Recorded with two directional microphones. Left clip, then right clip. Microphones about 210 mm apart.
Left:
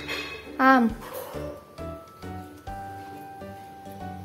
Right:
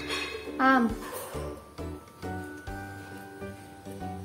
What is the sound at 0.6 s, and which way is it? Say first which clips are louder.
Speech: left 4 dB; 15° left (ahead or behind).